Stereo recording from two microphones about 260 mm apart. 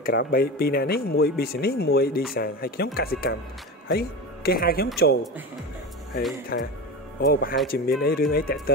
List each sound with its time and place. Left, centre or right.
0.0 s speech: left
6.5 s speech: left